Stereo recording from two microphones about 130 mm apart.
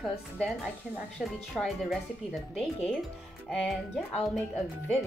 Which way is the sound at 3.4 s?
Centre (ahead or behind).